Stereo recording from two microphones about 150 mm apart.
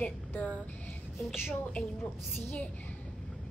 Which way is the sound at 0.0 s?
10° left (ahead or behind).